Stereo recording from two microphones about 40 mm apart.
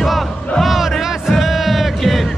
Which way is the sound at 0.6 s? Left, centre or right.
Centre.